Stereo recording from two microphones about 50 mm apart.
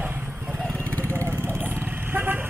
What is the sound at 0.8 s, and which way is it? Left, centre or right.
Vehicle, left.